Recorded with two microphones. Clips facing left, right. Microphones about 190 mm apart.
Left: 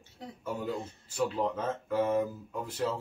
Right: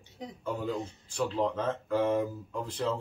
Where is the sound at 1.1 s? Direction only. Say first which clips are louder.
Even; 5° left (ahead or behind).